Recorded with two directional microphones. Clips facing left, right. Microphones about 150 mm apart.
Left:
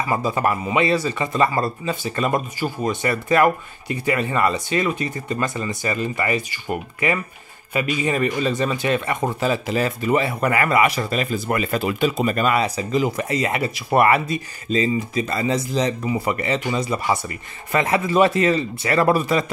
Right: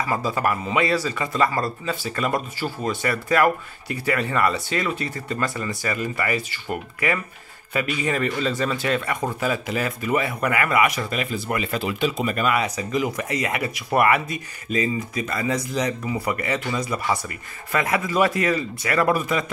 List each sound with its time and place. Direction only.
0.1 s speech: 20° left (ahead or behind)